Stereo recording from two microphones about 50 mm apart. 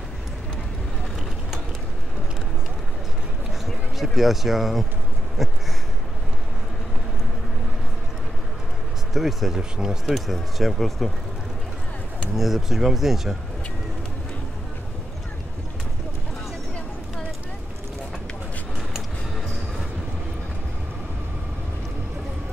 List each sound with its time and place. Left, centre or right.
3.6 s speech: centre
9.1 s speech: centre
10.1 s speech: centre
12.4 s speech: centre